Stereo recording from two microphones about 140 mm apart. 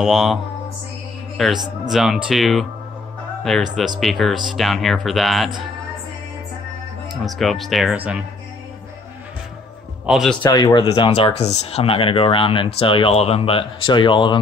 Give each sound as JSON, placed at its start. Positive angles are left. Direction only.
{"t": 0.0, "sound": "a man's voice", "side_deg": 0}
{"t": 7.1, "sound": "speech", "side_deg": 0}
{"t": 10.0, "sound": "speech", "side_deg": -5}
{"t": 10.3, "sound": "speech", "side_deg": 30}
{"t": 11.3, "sound": "speech", "side_deg": 50}